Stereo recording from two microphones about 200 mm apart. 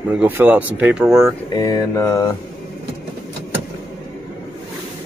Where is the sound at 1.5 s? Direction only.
20° left (ahead or behind).